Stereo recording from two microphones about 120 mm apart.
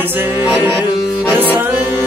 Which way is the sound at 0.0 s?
15° right (ahead or behind).